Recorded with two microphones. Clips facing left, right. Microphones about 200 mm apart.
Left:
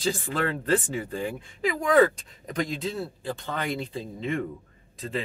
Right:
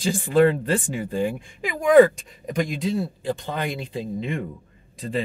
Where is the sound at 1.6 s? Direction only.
10° right (ahead or behind).